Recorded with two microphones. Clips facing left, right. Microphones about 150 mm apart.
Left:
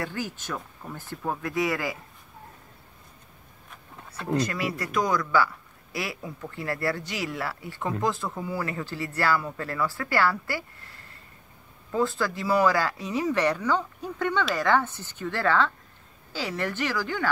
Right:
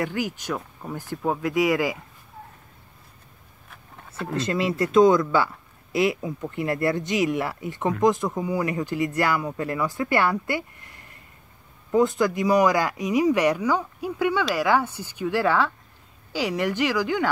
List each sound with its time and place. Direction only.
0.0 s speech: 15° right (ahead or behind)
4.4 s speech: 25° right (ahead or behind)